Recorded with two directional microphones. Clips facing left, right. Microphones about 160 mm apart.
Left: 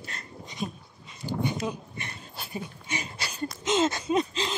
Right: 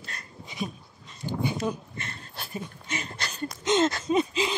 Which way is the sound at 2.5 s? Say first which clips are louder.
Even; 10° left (ahead or behind).